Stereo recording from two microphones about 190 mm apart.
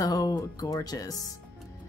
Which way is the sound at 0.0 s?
20° left (ahead or behind).